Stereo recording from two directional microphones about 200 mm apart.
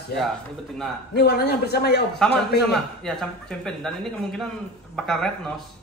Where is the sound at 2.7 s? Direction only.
Centre (ahead or behind).